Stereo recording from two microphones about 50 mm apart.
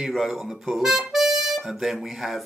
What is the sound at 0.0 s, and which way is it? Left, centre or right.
Speech, centre.